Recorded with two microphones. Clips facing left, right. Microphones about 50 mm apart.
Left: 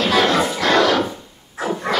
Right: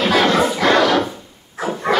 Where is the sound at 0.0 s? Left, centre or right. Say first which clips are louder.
Right 2 dB; centre.